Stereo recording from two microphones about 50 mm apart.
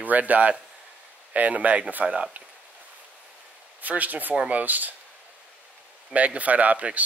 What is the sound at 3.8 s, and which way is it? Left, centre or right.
Speech, right.